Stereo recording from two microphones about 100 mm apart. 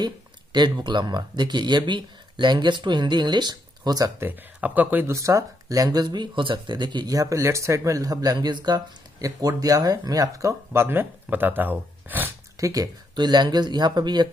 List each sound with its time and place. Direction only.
0.0 s speech: 50° right (ahead or behind)
4.2 s speech: 20° right (ahead or behind)
5.1 s speech: 30° right (ahead or behind); by 7.2 s 50° right (ahead or behind)
7.2 s speech: 30° right (ahead or behind)
12.5 s speech: 35° right (ahead or behind)